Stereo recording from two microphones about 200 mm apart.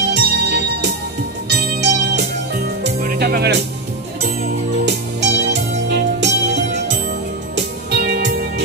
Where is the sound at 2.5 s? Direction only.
50° right (ahead or behind).